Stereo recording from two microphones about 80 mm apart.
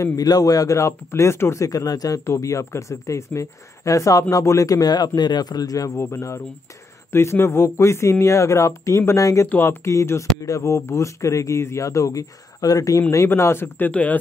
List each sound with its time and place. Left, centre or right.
0.0 s speech: left
5.9 s speech: left
9.5 s speech: left
13.3 s speech: left